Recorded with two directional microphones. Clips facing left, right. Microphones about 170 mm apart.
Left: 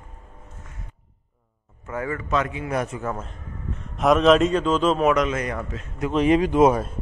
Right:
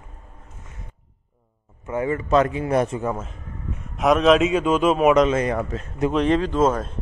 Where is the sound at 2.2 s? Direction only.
35° right (ahead or behind).